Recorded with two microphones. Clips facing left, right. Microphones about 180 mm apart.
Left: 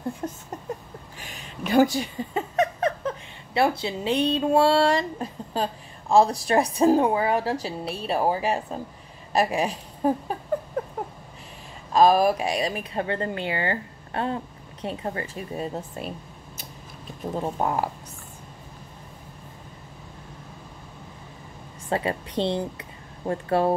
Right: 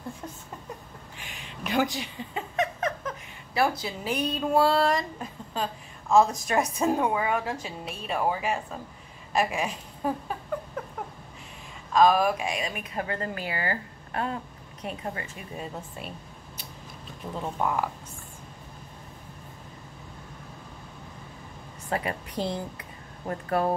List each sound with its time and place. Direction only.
0.2 s a sound: 45° left (ahead or behind)
1.2 s a woman's voice: 40° left (ahead or behind)
11.9 s speech: 35° left (ahead or behind)
17.3 s speech: 40° left (ahead or behind)
21.8 s speech: 25° left (ahead or behind)